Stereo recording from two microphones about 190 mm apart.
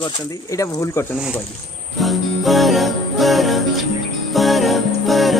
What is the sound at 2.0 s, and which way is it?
Music, centre (ahead or behind).